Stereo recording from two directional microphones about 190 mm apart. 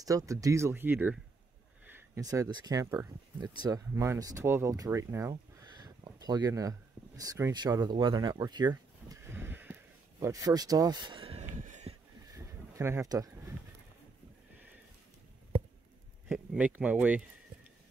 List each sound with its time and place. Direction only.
0.0 s speech: 15° right (ahead or behind); by 11.9 s 40° right (ahead or behind)
12.4 s a sound: 15° right (ahead or behind)
16.3 s speech: 5° right (ahead or behind)